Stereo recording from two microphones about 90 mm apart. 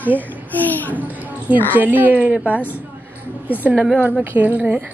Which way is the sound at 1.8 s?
20° right (ahead or behind).